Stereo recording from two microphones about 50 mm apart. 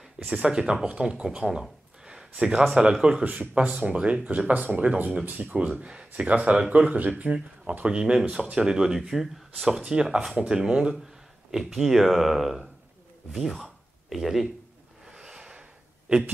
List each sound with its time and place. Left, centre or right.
0.3 s speech: right
5.8 s speech: right
9.7 s speech: centre
15.0 s a sound: centre